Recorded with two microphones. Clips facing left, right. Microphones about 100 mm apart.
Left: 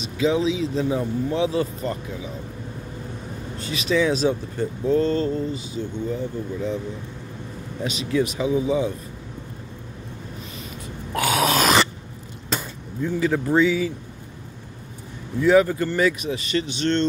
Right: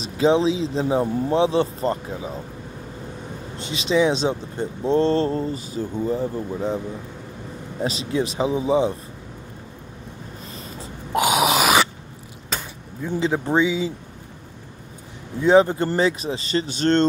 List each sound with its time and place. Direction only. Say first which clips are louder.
0.0 s speech: right 3 dB; 35° right (ahead or behind)
3.5 s speech: right 2 dB; 25° right (ahead or behind)
7.8 s speech: even; 30° right (ahead or behind)
11.1 s a sound: right 2 dB; 15° right (ahead or behind)
11.6 s a sound: right 1 dB; 5° right (ahead or behind)
12.5 s cutlery: left 2 dB; centre (ahead or behind)
13.1 s speech: even; 25° right (ahead or behind)
15.4 s speech: right 1 dB; 25° right (ahead or behind)